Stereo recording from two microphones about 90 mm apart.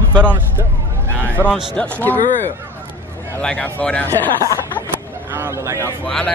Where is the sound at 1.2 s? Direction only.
20° left (ahead or behind).